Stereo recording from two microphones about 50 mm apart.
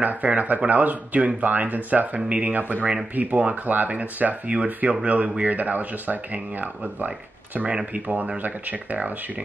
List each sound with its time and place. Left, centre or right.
0.0 s speech: right